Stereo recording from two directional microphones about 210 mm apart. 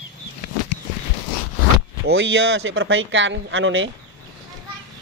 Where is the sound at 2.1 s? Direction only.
55° right (ahead or behind).